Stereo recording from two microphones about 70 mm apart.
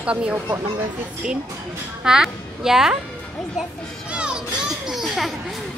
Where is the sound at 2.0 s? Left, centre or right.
Centre.